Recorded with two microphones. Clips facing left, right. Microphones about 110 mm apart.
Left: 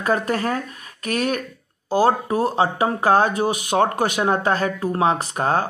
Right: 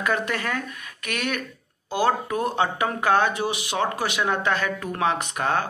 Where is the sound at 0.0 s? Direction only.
35° left (ahead or behind).